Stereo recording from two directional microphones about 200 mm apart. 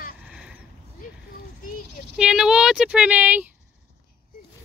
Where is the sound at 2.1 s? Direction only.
5° right (ahead or behind).